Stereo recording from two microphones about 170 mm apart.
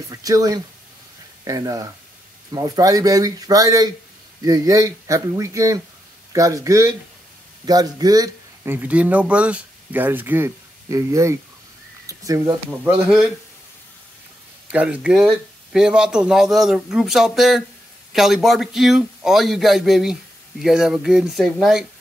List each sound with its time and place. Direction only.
0.1 s a man's voice: 20° right (ahead or behind)
8.7 s speech: 10° right (ahead or behind)
14.7 s a man's voice: 10° right (ahead or behind)